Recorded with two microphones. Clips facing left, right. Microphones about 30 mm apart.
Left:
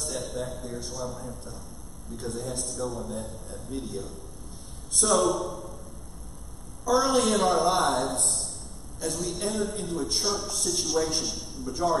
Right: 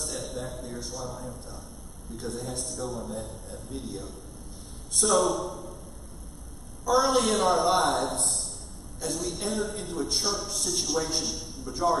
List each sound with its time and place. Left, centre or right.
0.0 s a man's voice: centre
7.0 s a man's voice: centre
11.7 s speech: right